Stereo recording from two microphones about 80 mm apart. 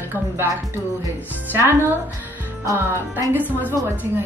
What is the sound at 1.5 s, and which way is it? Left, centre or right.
Speech, right.